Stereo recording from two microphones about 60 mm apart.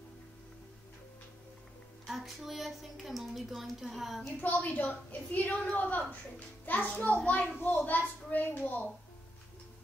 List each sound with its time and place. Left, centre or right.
2.0 s speech: centre
4.4 s a woman's voice: left